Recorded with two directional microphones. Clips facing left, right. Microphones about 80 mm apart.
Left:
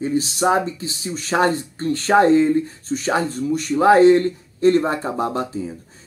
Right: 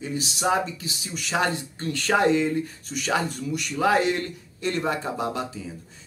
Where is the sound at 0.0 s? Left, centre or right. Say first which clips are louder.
Left 7 dB; left.